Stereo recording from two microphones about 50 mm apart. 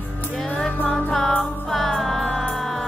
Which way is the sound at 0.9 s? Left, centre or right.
Centre.